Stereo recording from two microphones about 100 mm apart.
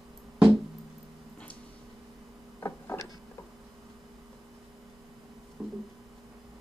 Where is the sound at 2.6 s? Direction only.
30° left (ahead or behind).